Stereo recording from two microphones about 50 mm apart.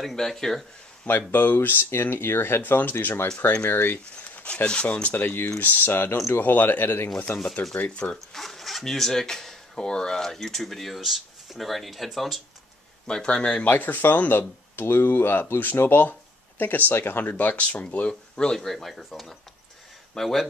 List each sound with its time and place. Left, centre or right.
0.1 s speech: centre
1.0 s speech: left
4.6 s speech: centre; by 7.4 s left
7.7 s speech: left
8.3 s speech: centre
13.1 s speech: centre
13.7 s speech: left
18.0 s speech: centre